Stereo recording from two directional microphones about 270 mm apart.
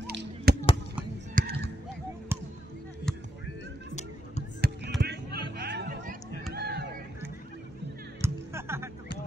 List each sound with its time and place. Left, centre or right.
0.5 s a sound: right
2.3 s basketball bounce: centre
3.1 s music: centre
4.6 s basketball bounce: right
5.0 s a sound: right
5.6 s chatter: right
6.5 s music: right
8.2 s music: centre